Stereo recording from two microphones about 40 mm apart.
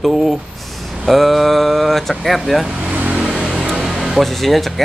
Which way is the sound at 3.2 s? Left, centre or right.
Centre.